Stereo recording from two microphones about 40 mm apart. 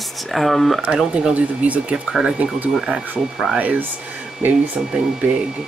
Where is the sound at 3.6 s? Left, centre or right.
Right.